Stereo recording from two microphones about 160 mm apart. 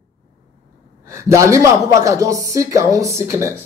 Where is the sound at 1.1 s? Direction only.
20° right (ahead or behind).